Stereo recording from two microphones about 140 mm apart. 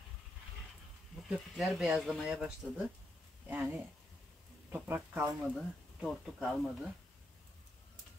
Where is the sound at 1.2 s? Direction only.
Centre (ahead or behind).